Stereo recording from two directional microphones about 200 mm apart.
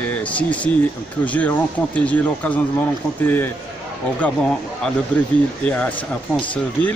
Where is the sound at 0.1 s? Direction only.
5° left (ahead or behind).